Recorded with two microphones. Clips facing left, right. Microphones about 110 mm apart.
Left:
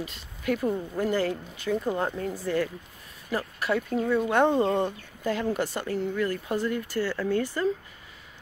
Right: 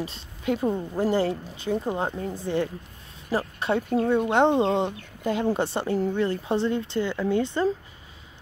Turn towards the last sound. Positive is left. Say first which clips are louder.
# right 3 dB
turn(degrees=-25)  # may be behind; listen again after turning